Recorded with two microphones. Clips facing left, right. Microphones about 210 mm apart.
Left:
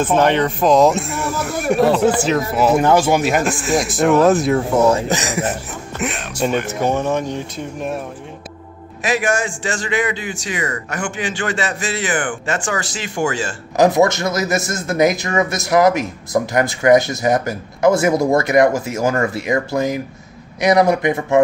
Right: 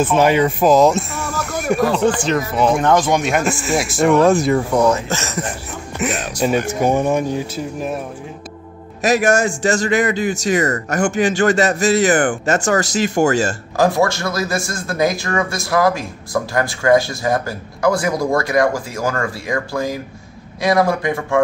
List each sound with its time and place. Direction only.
0.0 s speech: 10° right (ahead or behind)
5.0 s speech: 15° left (ahead or behind); by 6.2 s centre (ahead or behind)
6.7 s speech: 10° right (ahead or behind)
9.0 s a man's voice: 40° right (ahead or behind)
13.7 s a man's voice: 20° left (ahead or behind)